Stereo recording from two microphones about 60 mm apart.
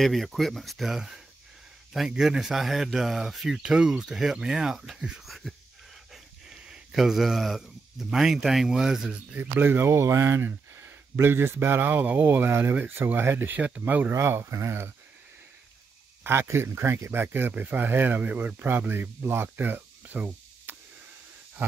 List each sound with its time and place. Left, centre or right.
0.0 s speech: centre
6.7 s speech: centre
9.3 s speech: right
13.6 s speech: right
14.1 s speech: right
16.3 s speech: right
20.7 s a sound: right